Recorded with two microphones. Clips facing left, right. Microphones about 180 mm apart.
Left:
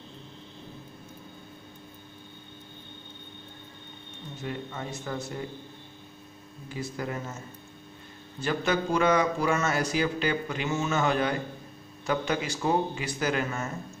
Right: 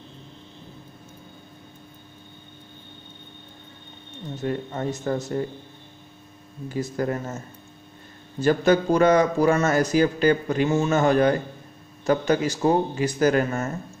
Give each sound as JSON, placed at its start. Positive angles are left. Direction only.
{"t": 4.4, "sound": "a man's voice", "side_deg": -45}
{"t": 6.7, "sound": "a man's voice", "side_deg": -45}
{"t": 8.4, "sound": "a man's voice", "side_deg": -40}